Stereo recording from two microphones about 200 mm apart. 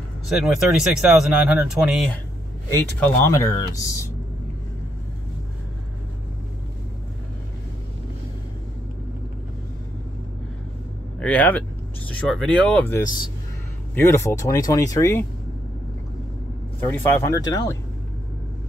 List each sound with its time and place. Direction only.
0.3 s speech: centre (ahead or behind)
2.7 s speech: 10° left (ahead or behind)
11.1 s speech: 5° left (ahead or behind)
16.8 s speech: 15° left (ahead or behind)